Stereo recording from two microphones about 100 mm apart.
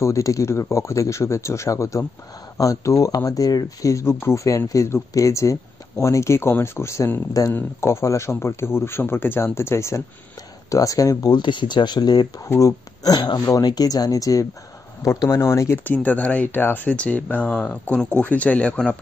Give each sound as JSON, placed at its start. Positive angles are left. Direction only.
{"t": 0.0, "sound": "speech", "side_deg": 30}
{"t": 15.8, "sound": "speech", "side_deg": 15}